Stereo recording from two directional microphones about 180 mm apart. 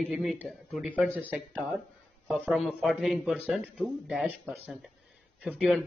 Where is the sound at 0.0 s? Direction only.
Centre (ahead or behind).